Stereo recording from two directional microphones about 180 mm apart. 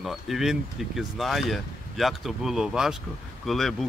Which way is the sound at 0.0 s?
Centre (ahead or behind).